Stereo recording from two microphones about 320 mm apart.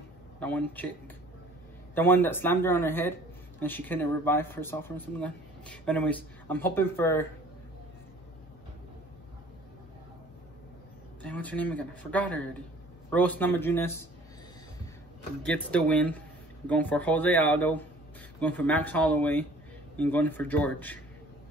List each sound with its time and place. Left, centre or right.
0.4 s a man's voice: centre
11.2 s a man's voice: centre
15.4 s speech: centre